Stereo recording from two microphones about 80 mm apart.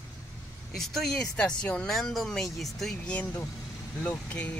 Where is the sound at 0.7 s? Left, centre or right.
Centre.